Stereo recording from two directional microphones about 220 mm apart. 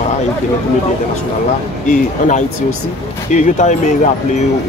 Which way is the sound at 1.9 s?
35° left (ahead or behind).